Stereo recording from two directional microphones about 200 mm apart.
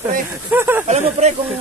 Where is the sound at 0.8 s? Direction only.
35° right (ahead or behind).